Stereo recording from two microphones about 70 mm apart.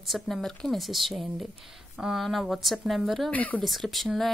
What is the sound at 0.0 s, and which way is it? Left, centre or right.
A woman's voice, centre.